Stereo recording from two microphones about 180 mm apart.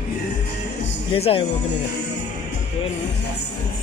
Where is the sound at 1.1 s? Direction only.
35° left (ahead or behind).